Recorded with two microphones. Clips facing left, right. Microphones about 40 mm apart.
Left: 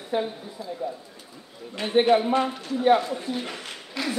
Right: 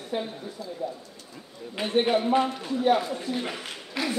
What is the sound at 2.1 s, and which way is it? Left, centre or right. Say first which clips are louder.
A man's voice: left 2 dB; centre.